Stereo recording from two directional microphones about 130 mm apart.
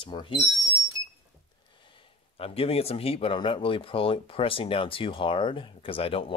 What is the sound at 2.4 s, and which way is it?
Speech, 50° left (ahead or behind).